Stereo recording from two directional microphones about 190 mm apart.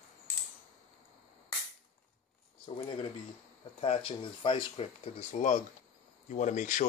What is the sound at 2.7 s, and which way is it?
Speech, 25° left (ahead or behind).